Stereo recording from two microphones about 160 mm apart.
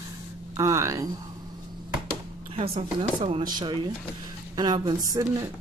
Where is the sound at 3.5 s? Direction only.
30° right (ahead or behind).